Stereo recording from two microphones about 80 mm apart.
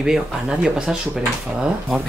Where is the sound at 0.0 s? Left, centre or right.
Centre.